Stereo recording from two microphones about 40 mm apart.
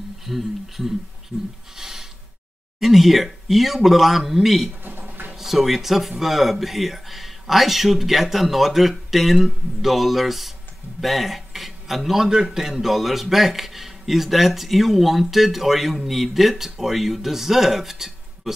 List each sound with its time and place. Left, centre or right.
0.3 s speech: centre
1.8 s gasp: centre
2.8 s speech: centre
4.8 s a sound: right
5.3 s speech: centre